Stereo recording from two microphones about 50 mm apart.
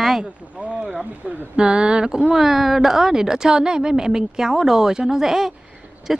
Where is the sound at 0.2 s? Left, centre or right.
Right.